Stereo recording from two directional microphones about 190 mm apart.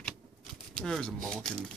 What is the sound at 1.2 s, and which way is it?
Speech, centre (ahead or behind).